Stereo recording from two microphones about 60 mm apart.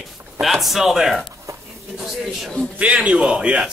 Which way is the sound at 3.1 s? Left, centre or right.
Centre.